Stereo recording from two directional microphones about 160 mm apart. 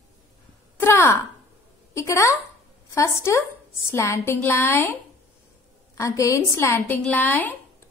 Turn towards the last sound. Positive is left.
turn(degrees=10)  # may be behind; listen again after turning